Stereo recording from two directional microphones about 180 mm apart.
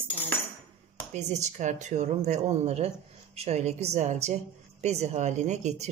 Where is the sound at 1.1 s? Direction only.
40° right (ahead or behind).